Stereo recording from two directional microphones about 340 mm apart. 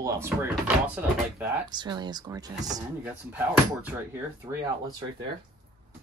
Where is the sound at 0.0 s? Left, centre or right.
Centre.